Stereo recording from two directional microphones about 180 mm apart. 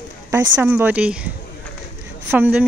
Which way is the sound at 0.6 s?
10° right (ahead or behind).